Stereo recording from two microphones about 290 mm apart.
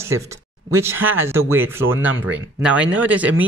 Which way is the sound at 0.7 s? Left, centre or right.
Centre.